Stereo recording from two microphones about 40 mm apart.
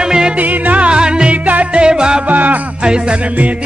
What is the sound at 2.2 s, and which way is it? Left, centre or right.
Music, right.